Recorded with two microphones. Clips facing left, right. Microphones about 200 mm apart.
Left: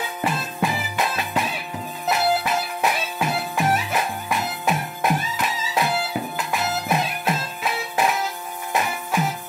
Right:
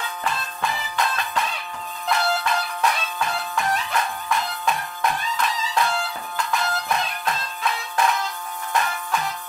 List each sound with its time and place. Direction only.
0.2 s music: 5° left (ahead or behind)